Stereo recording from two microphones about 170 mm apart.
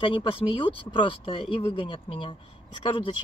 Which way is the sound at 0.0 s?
30° left (ahead or behind).